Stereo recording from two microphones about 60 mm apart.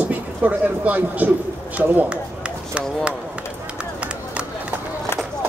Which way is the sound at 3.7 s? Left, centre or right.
Centre.